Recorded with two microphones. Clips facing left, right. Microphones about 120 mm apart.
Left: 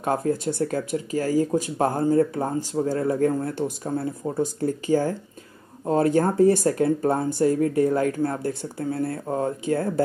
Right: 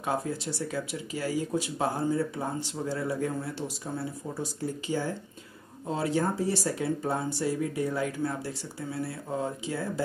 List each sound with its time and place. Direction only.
0.0 s speech: 50° left (ahead or behind)